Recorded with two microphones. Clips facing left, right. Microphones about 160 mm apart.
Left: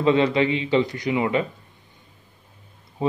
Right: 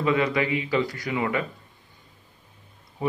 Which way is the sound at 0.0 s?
25° left (ahead or behind).